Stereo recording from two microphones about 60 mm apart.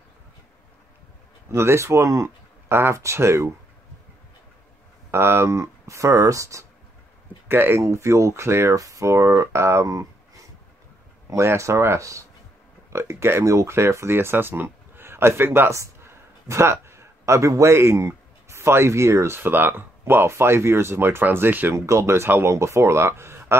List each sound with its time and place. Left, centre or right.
1.5 s speech: right
5.1 s speech: right
7.4 s speech: right
7.8 s speech: right
8.7 s speech: right
9.8 s a sound: right
11.2 s speech: right
15.7 s a man's voice: right
19.4 s speech: right
21.7 s speech: right